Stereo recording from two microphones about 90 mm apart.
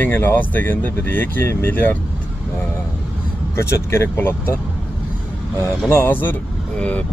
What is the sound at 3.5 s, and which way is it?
Speech, 30° left (ahead or behind).